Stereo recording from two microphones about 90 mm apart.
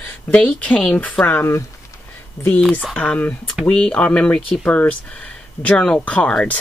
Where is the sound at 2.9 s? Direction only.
15° left (ahead or behind).